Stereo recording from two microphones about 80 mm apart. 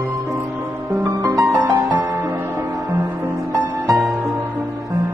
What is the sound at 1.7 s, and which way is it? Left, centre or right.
Music, right.